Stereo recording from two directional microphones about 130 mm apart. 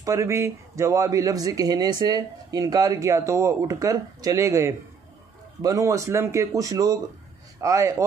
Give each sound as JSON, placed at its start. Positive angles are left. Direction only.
{"t": 0.0, "sound": "a man's voice", "side_deg": -25}